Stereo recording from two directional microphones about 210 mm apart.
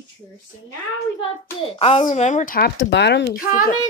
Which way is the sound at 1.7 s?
25° left (ahead or behind).